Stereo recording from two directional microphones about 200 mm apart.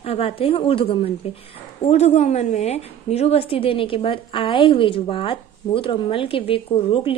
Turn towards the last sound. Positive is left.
turn(degrees=25)  # may be behind; listen again after turning